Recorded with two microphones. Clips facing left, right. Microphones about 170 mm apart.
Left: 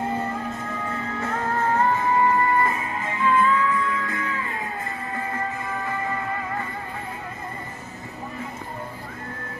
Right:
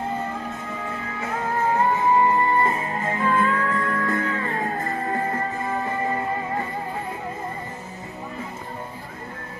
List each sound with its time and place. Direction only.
1.7 s music: 15° right (ahead or behind)